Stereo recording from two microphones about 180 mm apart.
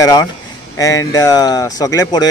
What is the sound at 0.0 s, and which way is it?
A man's voice, 20° left (ahead or behind).